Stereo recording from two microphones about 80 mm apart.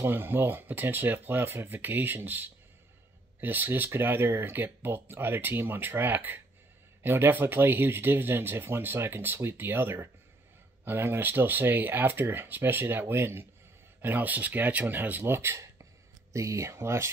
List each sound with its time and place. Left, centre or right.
0.0 s speech: right